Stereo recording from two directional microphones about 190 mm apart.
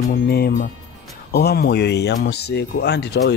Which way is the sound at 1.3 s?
55° left (ahead or behind).